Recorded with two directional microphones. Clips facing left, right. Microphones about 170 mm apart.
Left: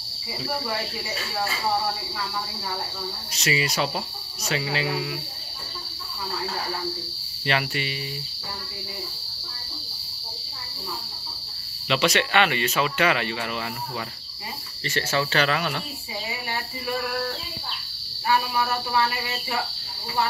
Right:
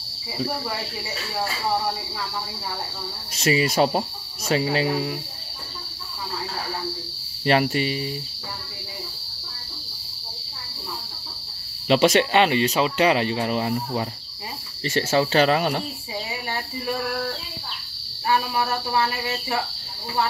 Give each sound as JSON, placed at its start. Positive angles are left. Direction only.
{"t": 3.3, "sound": "speech", "side_deg": -50}
{"t": 7.4, "sound": "speech", "side_deg": -40}
{"t": 11.9, "sound": "speech", "side_deg": -40}
{"t": 15.0, "sound": "speech", "side_deg": -35}